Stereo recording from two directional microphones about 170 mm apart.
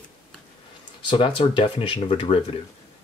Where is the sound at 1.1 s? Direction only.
30° left (ahead or behind).